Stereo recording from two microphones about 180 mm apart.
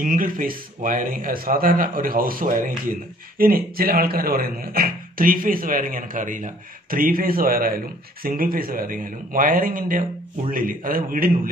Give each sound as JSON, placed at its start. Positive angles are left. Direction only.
{"t": 0.0, "sound": "speech", "side_deg": -50}